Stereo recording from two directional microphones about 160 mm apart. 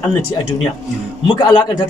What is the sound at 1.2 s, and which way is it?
Speech, 30° left (ahead or behind).